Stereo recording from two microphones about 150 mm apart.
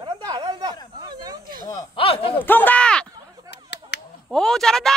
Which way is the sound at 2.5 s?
10° left (ahead or behind).